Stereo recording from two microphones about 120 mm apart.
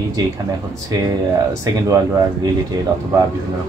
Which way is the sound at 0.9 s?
30° right (ahead or behind).